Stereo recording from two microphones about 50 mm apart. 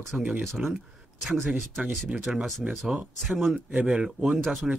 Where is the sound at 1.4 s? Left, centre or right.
Right.